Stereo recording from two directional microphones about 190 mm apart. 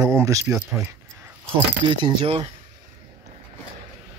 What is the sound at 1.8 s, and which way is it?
Speech, 25° right (ahead or behind).